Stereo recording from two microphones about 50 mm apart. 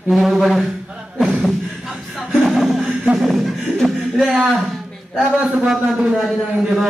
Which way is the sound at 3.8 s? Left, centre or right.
Centre.